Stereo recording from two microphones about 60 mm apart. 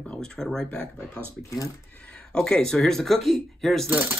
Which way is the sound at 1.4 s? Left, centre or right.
Left.